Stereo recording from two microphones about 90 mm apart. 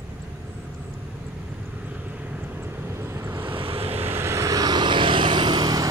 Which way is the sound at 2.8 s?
30° right (ahead or behind).